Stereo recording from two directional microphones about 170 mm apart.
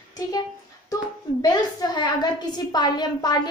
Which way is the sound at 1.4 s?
25° left (ahead or behind).